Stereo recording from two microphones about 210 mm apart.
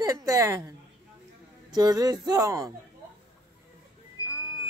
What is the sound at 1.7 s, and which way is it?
Speech, 20° right (ahead or behind).